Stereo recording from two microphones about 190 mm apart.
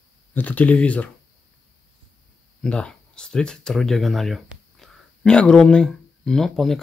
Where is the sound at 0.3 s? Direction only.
10° left (ahead or behind).